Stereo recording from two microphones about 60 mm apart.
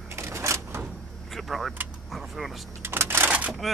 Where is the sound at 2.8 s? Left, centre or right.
Right.